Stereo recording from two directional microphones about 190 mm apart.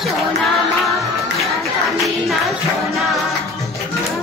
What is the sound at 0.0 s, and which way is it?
Music, centre (ahead or behind).